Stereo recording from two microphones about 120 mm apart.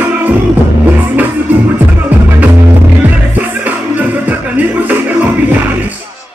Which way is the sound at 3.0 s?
15° right (ahead or behind).